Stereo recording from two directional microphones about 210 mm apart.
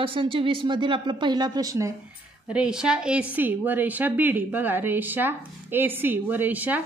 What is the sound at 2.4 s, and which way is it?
A woman's voice, 5° right (ahead or behind).